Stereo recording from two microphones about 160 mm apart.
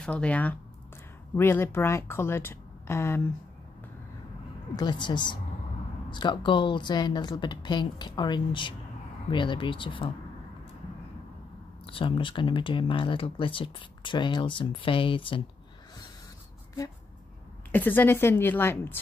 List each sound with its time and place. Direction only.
0.0 s speech: 5° left (ahead or behind)
4.7 s speech: 25° left (ahead or behind)
11.8 s speech: 35° left (ahead or behind)
17.6 s speech: 10° left (ahead or behind)